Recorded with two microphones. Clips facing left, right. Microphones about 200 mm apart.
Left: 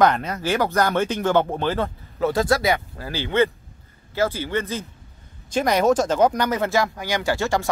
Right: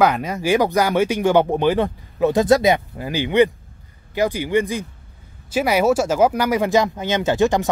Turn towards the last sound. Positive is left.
turn(degrees=-20)  # may be behind; listen again after turning